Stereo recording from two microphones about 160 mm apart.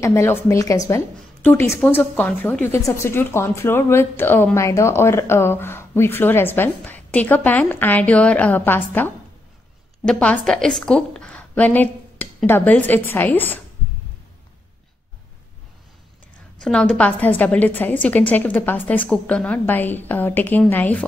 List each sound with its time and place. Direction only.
0.0 s a woman's voice: 15° left (ahead or behind)
16.6 s a woman's voice: 5° left (ahead or behind)